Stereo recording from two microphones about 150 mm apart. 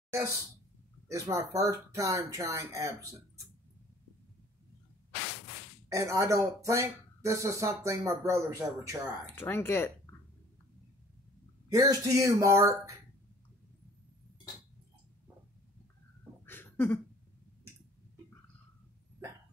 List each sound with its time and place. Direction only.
1.0 s speech: 20° right (ahead or behind)
5.9 s speech: 20° right (ahead or behind)
9.2 s speech: 15° left (ahead or behind)
11.7 s speech: 20° right (ahead or behind)
16.4 s cough: 15° left (ahead or behind)